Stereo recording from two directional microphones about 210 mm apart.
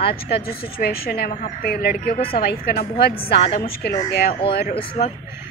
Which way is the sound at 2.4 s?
45° left (ahead or behind).